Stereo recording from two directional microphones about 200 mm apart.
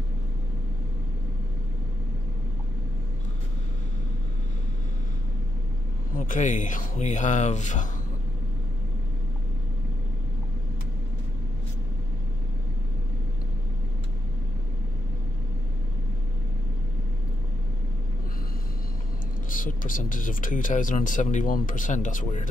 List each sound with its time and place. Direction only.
6.1 s speech: 40° left (ahead or behind)
19.5 s speech: 40° left (ahead or behind)